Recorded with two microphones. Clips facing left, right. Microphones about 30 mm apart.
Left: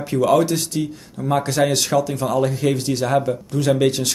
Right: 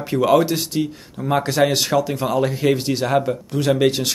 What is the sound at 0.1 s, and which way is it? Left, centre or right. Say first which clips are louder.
Speech: even; right.